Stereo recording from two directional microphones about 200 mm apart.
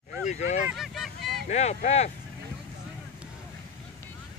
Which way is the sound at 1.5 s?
35° left (ahead or behind).